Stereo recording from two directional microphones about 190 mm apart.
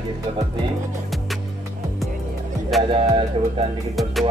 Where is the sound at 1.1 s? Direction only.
Centre (ahead or behind).